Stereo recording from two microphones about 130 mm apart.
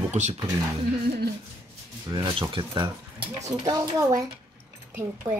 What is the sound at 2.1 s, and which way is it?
Speech, 40° right (ahead or behind).